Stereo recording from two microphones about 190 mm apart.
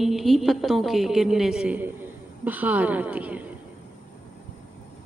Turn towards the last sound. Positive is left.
turn(degrees=-5)  # may be behind; listen again after turning